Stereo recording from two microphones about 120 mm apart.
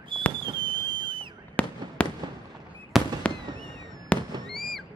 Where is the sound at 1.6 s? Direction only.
15° left (ahead or behind).